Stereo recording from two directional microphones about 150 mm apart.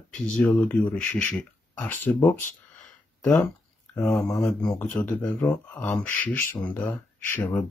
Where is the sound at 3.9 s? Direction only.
20° left (ahead or behind).